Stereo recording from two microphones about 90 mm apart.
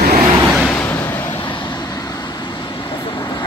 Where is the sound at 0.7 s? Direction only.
25° left (ahead or behind).